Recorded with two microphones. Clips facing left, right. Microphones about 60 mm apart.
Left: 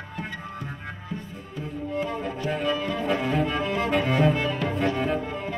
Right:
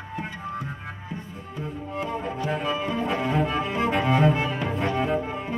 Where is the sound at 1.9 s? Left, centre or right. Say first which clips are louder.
Left 1 dB; right.